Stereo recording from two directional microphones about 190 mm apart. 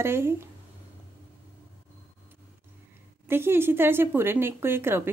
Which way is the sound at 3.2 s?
10° right (ahead or behind).